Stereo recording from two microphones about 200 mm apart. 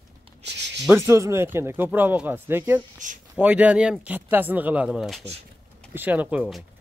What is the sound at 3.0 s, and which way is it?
Speech, 40° right (ahead or behind).